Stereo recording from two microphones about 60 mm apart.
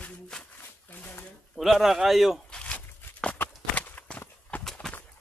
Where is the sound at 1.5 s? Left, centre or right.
Centre.